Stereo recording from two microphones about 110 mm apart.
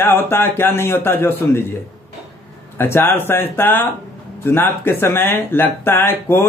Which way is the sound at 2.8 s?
20° left (ahead or behind).